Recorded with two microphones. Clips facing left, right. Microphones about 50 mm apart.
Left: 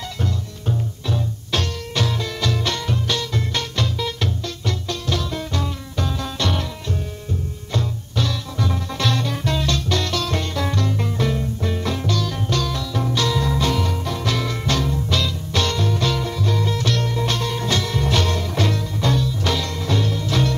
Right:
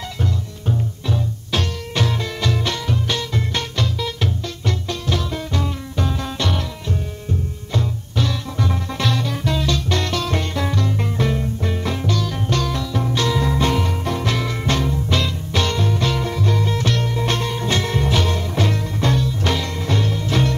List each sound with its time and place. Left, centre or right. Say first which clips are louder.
0.2 s music: right 2 dB; centre
2.0 s music: right 1 dB; right
3.7 s music: even; centre
4.6 s music: right 2 dB; right
7.7 s music: right 1 dB; centre
9.1 s music: right 1 dB; centre
9.8 s music: right 1 dB; right
12.4 s music: right 2 dB; right
14.3 s music: right 1 dB; right
15.5 s music: right 1 dB; right
18.0 s music: right 1 dB; centre
18.9 s music: right 1 dB; right